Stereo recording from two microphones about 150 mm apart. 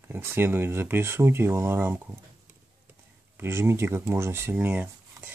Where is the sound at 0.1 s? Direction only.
15° right (ahead or behind).